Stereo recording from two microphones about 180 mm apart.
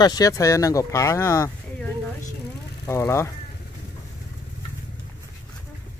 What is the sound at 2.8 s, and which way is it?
Speech, 15° left (ahead or behind).